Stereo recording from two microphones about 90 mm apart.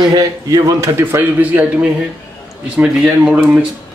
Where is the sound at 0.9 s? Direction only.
30° right (ahead or behind).